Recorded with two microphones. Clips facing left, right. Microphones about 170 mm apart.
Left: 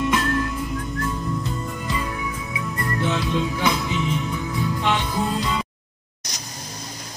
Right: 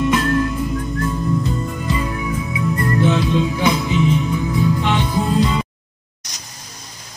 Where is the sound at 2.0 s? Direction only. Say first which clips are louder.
Right 6 dB; 10° right (ahead or behind).